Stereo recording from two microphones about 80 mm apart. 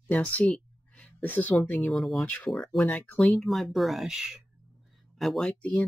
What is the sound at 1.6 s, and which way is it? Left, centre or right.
Speech, left.